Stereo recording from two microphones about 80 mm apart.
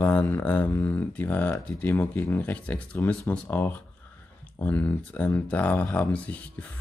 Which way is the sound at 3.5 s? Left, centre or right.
Left.